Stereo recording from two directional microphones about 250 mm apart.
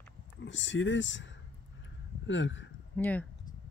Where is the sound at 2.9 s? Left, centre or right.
Centre.